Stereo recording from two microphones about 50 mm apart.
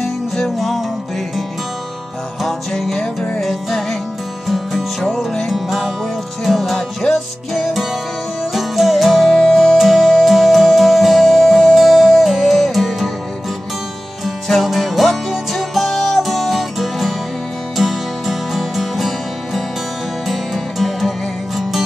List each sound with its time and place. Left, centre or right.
0.0 s music: centre
2.4 s music: centre
7.0 s music: left
7.5 s music: centre
9.4 s music: centre
9.8 s music: centre
14.2 s music: centre